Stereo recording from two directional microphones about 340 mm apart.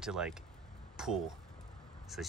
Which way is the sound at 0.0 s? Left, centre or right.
Centre.